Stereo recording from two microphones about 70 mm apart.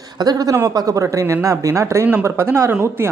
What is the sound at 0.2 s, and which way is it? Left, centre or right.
Speech, right.